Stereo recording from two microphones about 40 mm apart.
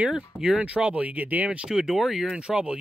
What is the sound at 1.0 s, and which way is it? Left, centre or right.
Speech, right.